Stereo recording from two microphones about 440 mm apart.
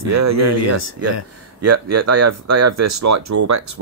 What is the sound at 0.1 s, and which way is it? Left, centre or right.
Speech, right.